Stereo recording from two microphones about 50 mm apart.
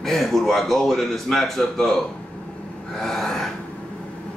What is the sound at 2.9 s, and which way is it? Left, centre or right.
Speech, centre.